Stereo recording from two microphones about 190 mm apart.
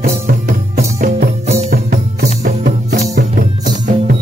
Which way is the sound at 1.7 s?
55° right (ahead or behind).